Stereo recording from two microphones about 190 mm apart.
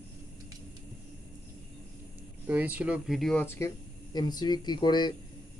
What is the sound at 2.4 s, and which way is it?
Speech, 10° right (ahead or behind).